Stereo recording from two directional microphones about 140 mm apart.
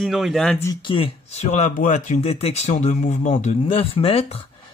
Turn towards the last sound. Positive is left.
turn(degrees=45)  # may be behind; listen again after turning